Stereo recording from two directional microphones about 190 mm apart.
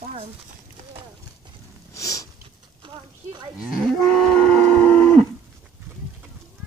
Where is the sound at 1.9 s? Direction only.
15° left (ahead or behind).